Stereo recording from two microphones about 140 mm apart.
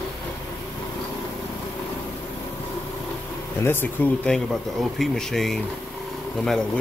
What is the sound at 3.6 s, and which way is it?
Speech, 15° left (ahead or behind).